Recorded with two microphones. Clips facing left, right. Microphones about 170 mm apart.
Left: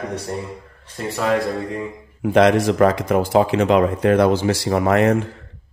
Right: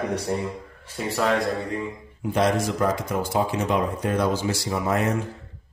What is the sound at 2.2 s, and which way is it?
Speech, 75° left (ahead or behind).